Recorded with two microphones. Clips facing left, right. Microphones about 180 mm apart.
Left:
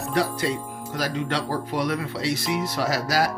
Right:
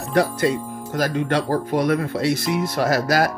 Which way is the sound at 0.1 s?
50° right (ahead or behind).